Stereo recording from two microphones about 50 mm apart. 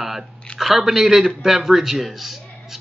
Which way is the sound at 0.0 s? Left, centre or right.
Centre.